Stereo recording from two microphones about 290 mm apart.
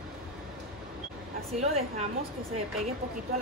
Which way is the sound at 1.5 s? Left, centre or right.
Right.